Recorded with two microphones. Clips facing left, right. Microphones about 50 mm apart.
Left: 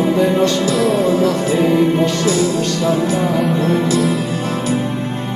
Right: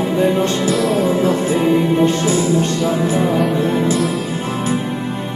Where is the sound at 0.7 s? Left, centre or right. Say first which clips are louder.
Left 1 dB; centre.